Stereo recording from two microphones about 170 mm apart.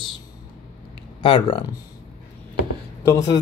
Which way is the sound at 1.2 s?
30° left (ahead or behind).